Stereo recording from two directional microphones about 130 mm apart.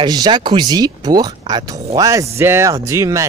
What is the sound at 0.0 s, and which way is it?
Speech, 35° right (ahead or behind).